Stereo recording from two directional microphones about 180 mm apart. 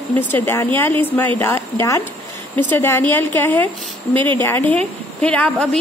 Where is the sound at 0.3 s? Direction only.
10° left (ahead or behind).